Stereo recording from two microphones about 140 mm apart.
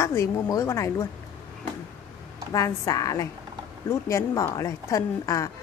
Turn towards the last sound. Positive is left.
turn(degrees=25)  # may be behind; listen again after turning